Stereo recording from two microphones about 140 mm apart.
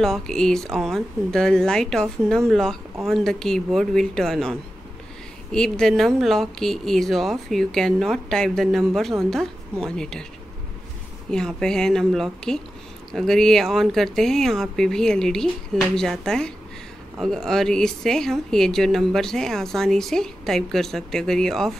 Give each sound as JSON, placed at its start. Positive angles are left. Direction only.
{"t": 0.0, "sound": "speech", "side_deg": 5}
{"t": 11.2, "sound": "speech", "side_deg": 5}